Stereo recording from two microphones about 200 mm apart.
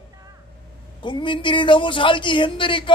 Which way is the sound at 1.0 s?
25° left (ahead or behind).